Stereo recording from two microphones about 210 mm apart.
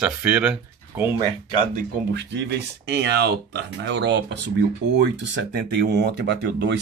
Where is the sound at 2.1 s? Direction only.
55° right (ahead or behind).